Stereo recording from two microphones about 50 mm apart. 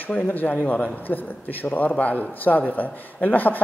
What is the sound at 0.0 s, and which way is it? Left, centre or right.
Speech, left.